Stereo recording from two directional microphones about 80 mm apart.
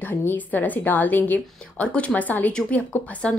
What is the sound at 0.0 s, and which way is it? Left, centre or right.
A woman's voice, left.